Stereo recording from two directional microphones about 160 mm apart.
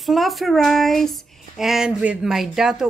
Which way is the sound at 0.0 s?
Centre (ahead or behind).